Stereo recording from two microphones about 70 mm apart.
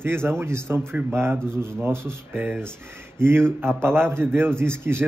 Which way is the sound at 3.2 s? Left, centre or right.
Right.